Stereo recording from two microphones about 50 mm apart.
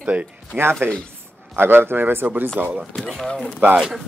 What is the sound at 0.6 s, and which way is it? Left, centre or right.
Speech, right.